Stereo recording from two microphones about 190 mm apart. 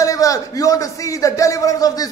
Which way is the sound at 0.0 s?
20° left (ahead or behind).